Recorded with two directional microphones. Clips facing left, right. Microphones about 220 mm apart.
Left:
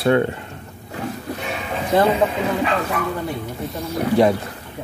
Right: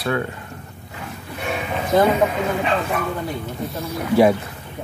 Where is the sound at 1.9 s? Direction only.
30° left (ahead or behind).